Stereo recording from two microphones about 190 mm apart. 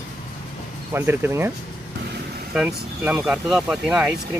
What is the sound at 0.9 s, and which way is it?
Speech, 10° right (ahead or behind).